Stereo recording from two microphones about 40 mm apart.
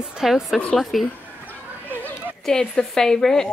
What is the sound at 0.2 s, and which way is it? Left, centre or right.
Speech, centre.